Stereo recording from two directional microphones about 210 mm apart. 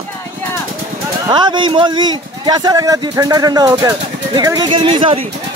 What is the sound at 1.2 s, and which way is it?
Speech, 20° right (ahead or behind).